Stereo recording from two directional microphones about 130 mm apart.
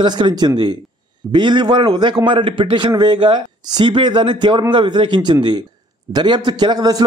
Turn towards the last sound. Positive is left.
turn(degrees=-30)  # may be behind; listen again after turning